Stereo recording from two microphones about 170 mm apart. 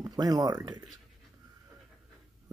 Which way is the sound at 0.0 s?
20° right (ahead or behind).